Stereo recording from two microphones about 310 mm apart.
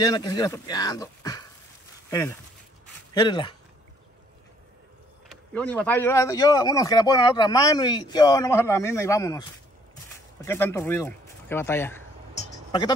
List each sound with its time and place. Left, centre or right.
0.0 s speech: centre
5.3 s speech: centre